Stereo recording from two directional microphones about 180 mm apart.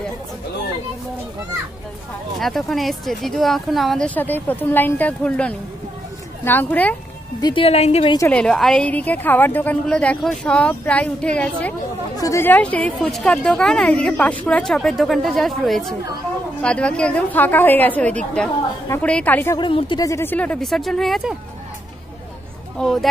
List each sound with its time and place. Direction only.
2.3 s a woman's voice: centre (ahead or behind)
7.3 s speech: 25° left (ahead or behind)
8.3 s a woman's voice: 5° left (ahead or behind)
19.6 s a woman's voice: 25° left (ahead or behind); by 21.4 s centre (ahead or behind)
22.8 s a woman's voice: centre (ahead or behind)